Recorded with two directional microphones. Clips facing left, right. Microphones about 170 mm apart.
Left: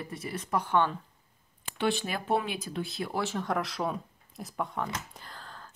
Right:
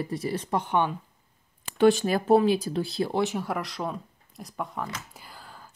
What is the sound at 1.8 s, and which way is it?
Speech, 45° right (ahead or behind).